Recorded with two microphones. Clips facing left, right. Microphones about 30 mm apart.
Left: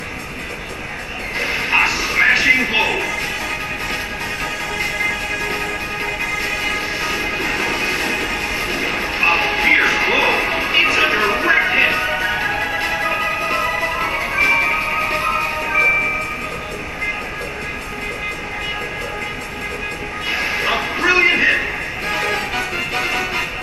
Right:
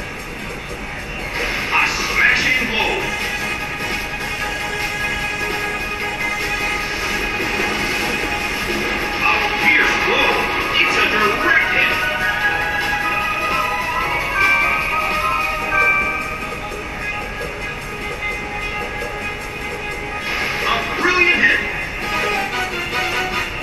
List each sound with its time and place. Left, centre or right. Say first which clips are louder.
1.4 s music: left 1 dB; centre
7.3 s music: even; centre
20.6 s music: even; centre